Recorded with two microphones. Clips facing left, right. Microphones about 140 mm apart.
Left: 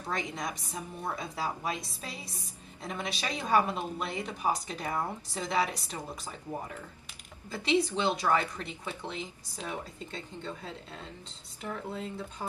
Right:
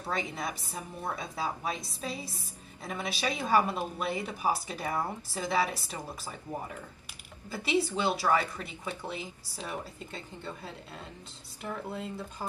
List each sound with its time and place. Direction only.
0.0 s speech: 5° right (ahead or behind)